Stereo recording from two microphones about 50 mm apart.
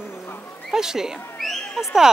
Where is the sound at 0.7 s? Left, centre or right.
Centre.